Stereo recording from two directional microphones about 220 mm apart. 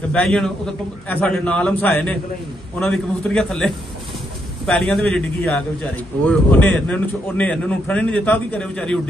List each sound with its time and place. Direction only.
0.1 s a man's voice: 5° left (ahead or behind)